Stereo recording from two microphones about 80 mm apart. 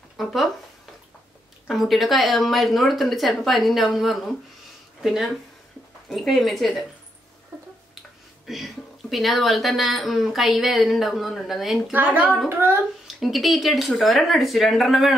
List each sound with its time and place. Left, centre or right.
0.2 s speech: centre
1.7 s speech: centre
8.5 s speech: centre
11.9 s speech: right
13.0 s speech: centre